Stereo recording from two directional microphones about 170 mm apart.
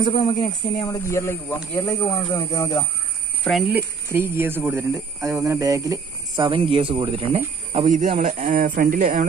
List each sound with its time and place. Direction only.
0.0 s speech: 30° left (ahead or behind)
0.9 s speech: 15° left (ahead or behind)
3.4 s speech: centre (ahead or behind)
3.7 s speech: 15° right (ahead or behind); by 9.3 s 50° right (ahead or behind)